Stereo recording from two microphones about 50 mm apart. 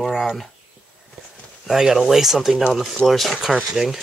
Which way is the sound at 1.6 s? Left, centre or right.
Centre.